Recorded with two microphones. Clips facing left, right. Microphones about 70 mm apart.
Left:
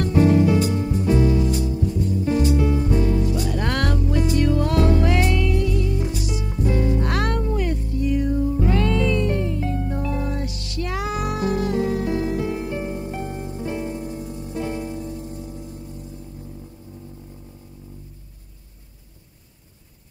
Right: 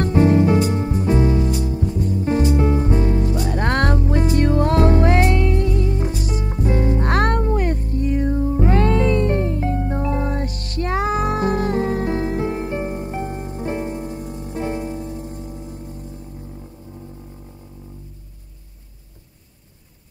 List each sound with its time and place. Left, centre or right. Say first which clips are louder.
0.0 s music: right 1 dB; right